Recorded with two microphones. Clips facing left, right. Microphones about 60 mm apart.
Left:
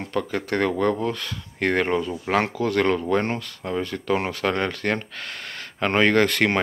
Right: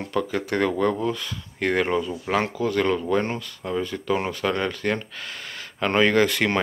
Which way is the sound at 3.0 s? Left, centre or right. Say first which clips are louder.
Left 1 dB; left.